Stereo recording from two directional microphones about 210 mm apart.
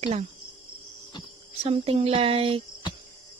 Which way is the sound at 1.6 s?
30° right (ahead or behind).